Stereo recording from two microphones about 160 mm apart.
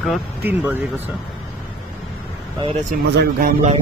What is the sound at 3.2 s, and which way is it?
Speech, 75° right (ahead or behind).